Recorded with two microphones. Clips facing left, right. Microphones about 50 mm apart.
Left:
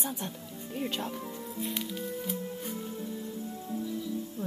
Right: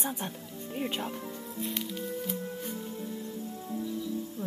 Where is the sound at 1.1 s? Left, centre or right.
Centre.